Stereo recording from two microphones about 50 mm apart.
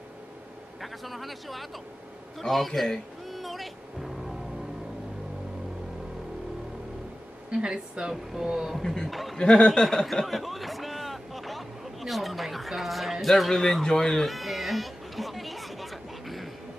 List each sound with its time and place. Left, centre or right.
0.7 s speech: centre
7.5 s speech: centre
8.8 s speech: centre
9.4 s speech: centre
9.7 s a sound: centre